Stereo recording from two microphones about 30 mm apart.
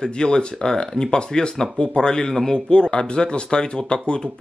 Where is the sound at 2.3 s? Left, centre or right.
Centre.